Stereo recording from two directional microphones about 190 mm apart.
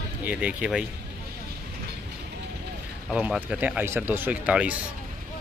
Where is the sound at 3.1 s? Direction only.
5° right (ahead or behind).